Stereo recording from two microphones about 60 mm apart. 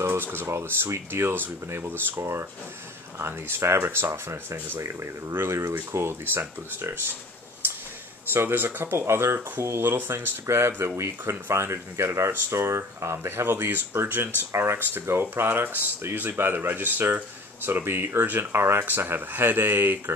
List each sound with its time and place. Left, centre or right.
0.0 s speech: right
8.3 s speech: right